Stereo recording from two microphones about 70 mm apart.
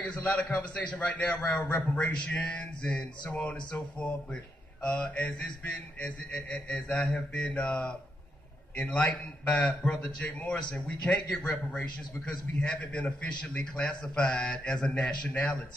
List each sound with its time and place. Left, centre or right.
0.0 s a man's voice: centre
2.1 s a man's voice: centre
9.9 s a man's voice: centre